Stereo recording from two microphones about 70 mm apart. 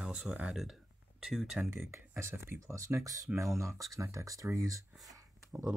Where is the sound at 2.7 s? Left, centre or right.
Right.